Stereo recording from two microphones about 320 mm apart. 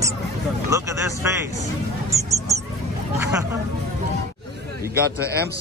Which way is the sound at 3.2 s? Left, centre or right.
Centre.